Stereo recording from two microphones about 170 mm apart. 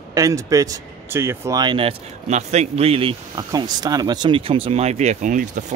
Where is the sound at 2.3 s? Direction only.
40° right (ahead or behind).